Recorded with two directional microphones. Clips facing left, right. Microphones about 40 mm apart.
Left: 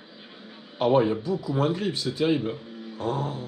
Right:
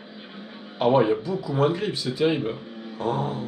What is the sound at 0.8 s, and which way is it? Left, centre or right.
Speech, right.